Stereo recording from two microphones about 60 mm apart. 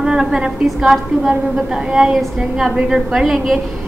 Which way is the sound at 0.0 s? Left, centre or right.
Centre.